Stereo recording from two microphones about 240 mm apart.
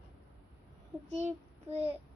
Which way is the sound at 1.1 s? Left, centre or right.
Right.